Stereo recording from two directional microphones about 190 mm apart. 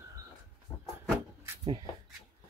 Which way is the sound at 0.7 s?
15° left (ahead or behind).